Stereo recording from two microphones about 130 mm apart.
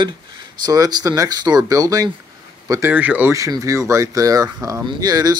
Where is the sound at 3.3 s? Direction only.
25° right (ahead or behind).